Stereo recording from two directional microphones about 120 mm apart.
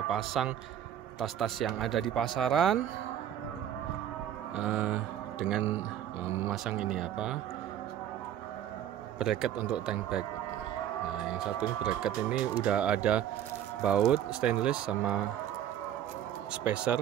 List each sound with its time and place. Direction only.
0.1 s speech: centre (ahead or behind)
4.6 s speech: 5° right (ahead or behind)
6.2 s speech: 20° right (ahead or behind)
6.5 s speech: 5° right (ahead or behind)
9.2 s speech: centre (ahead or behind)
11.1 s speech: 5° right (ahead or behind)
16.6 s speech: 10° right (ahead or behind)